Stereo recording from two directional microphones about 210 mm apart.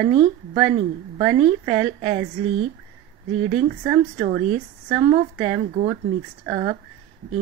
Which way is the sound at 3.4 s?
25° right (ahead or behind).